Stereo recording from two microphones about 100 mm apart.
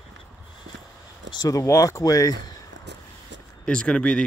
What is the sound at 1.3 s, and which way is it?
Speech, 40° left (ahead or behind).